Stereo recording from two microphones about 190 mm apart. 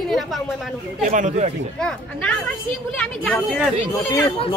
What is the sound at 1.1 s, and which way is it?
Speech, 40° right (ahead or behind).